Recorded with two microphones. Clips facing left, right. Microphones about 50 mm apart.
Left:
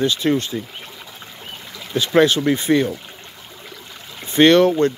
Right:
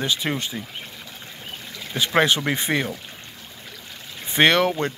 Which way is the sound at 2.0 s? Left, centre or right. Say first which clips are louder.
Left 4 dB; right.